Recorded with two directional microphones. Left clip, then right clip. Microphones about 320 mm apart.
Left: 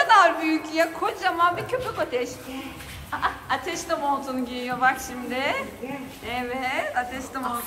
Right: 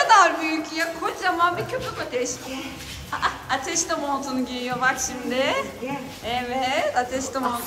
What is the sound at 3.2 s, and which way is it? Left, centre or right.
A woman's voice, centre.